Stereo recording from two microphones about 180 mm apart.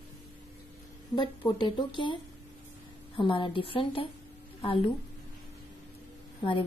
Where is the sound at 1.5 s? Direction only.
25° left (ahead or behind).